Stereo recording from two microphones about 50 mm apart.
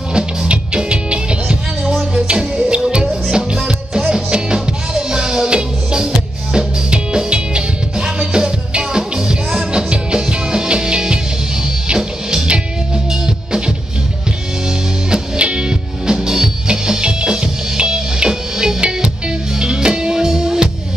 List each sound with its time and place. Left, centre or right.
0.1 s music: centre
1.9 s music: centre
2.2 s music: centre
15.0 s music: centre